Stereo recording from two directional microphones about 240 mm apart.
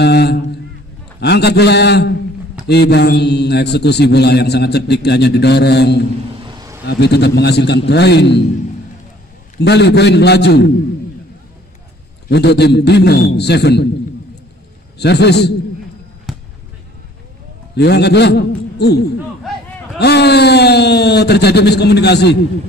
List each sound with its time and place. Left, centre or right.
0.0 s a sound: left
1.2 s a man's voice: left
6.4 s a sound: centre
6.9 s a man's voice: left
9.6 s a man's voice: left
12.3 s a man's voice: left
15.0 s a man's voice: left
16.3 s basketball bounce: centre
17.7 s a man's voice: left